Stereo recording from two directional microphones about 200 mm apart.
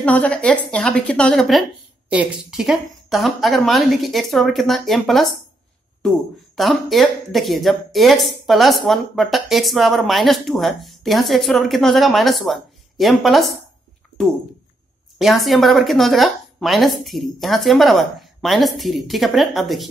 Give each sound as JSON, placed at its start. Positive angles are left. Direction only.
{"t": 0.0, "sound": "speech", "side_deg": 5}
{"t": 15.1, "sound": "speech", "side_deg": 0}